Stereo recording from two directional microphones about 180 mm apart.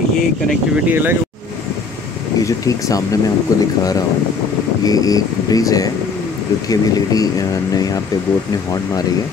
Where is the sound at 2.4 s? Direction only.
20° left (ahead or behind).